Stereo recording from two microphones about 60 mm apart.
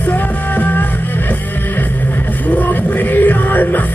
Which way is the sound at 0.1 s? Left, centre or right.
Left.